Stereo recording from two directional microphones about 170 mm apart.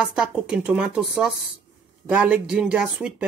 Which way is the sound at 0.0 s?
5° right (ahead or behind).